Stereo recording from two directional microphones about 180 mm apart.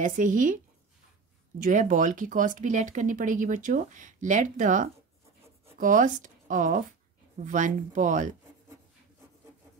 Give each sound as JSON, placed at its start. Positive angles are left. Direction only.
{"t": 0.0, "sound": "speech", "side_deg": -45}
{"t": 1.6, "sound": "speech", "side_deg": -45}